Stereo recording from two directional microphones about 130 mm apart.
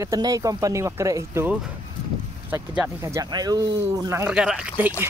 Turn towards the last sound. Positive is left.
turn(degrees=-10)  # may be behind; listen again after turning